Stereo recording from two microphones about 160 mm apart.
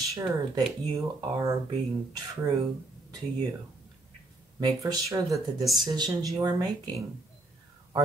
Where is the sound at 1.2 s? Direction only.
20° right (ahead or behind).